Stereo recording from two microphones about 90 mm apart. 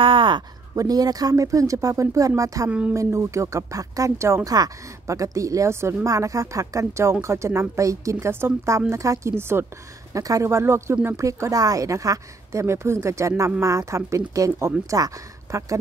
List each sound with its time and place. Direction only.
0.0 s a sound: 70° right (ahead or behind)
0.7 s a woman's voice: 45° right (ahead or behind); by 9.7 s 25° right (ahead or behind)
10.1 s a woman's voice: 35° right (ahead or behind)